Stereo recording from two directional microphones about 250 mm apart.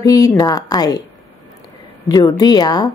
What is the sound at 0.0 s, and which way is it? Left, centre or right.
Speech, centre.